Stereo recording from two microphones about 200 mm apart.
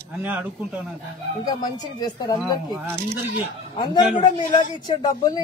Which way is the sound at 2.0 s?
20° left (ahead or behind).